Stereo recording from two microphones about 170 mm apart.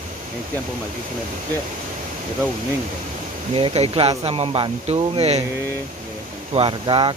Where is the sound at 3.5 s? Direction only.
35° right (ahead or behind).